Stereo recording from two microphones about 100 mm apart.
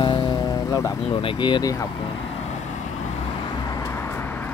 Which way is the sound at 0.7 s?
35° left (ahead or behind).